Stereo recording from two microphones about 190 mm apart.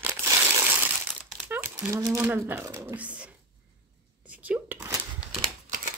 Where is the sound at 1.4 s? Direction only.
10° right (ahead or behind).